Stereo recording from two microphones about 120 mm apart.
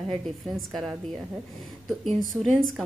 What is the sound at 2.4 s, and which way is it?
Speech, centre (ahead or behind).